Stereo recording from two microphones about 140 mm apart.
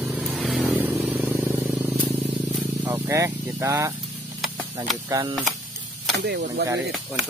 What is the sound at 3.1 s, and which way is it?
Speech, 20° right (ahead or behind).